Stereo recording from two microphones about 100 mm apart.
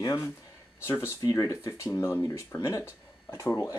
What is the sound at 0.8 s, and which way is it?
Speech, 25° left (ahead or behind).